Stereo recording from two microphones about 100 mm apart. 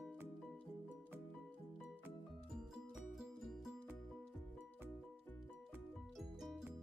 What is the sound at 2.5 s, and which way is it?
Music, 5° right (ahead or behind).